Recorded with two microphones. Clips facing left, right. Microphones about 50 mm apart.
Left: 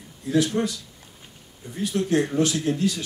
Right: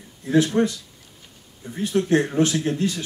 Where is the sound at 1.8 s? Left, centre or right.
Right.